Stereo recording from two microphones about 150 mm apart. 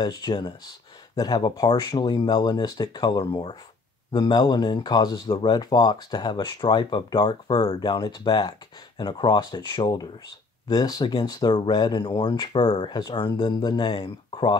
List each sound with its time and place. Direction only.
0.0 s speech: 30° left (ahead or behind)